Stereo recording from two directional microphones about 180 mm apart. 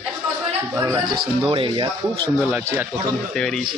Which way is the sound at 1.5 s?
25° right (ahead or behind).